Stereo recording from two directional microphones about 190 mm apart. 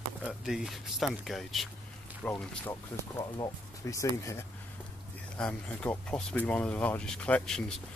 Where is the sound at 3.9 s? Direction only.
15° left (ahead or behind).